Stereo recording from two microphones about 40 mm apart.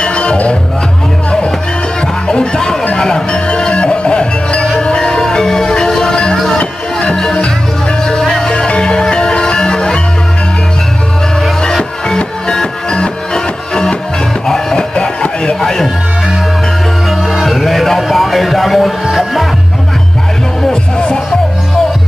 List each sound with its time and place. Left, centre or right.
0.0 s music: left
2.2 s music: left
6.3 s music: centre
6.6 s music: left
8.2 s music: centre
8.5 s music: left
11.6 s music: centre
15.6 s music: centre
17.3 s music: centre